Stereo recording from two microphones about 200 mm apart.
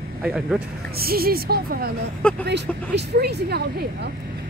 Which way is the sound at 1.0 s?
50° right (ahead or behind).